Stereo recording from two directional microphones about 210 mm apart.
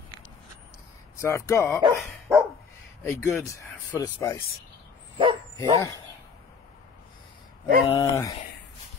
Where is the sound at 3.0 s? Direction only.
15° left (ahead or behind).